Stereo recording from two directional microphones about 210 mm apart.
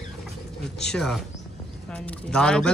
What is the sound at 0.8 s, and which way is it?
Speech, centre (ahead or behind).